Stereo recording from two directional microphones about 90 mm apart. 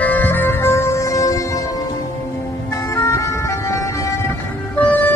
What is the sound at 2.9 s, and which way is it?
Vehicle, 35° left (ahead or behind).